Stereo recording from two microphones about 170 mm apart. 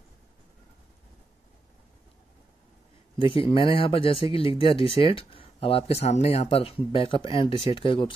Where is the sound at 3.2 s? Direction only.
30° left (ahead or behind).